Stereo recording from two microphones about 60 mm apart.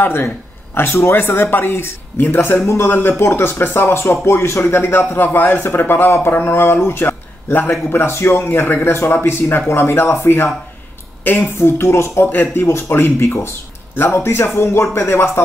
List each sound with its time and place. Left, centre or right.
0.0 s speech: left